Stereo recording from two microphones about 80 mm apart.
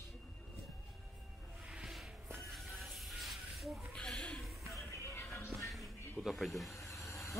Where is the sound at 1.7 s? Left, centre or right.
Centre.